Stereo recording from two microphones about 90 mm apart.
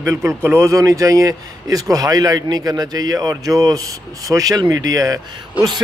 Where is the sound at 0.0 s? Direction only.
30° right (ahead or behind).